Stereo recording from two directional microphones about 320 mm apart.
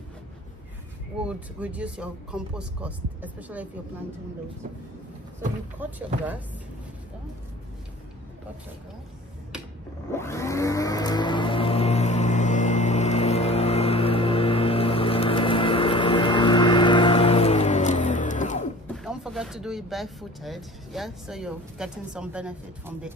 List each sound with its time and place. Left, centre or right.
1.2 s speech: centre
5.8 s speech: centre
10.1 s vehicle: centre
18.9 s speech: centre